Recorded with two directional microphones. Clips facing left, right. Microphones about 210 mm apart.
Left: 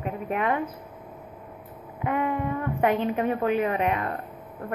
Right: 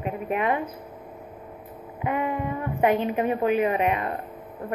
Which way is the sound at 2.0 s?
15° right (ahead or behind).